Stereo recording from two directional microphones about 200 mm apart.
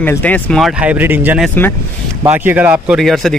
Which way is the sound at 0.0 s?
10° left (ahead or behind).